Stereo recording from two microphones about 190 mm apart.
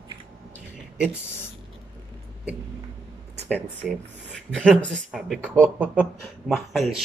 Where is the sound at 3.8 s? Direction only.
5° right (ahead or behind).